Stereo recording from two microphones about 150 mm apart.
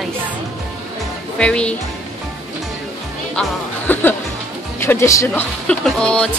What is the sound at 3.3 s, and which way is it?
Speech, 10° left (ahead or behind).